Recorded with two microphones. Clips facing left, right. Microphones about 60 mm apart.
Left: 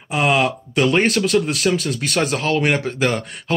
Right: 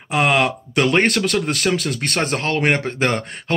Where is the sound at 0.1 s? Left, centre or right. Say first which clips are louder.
Even; right.